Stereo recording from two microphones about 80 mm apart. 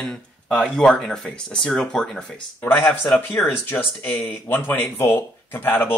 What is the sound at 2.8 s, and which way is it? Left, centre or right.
Speech, left.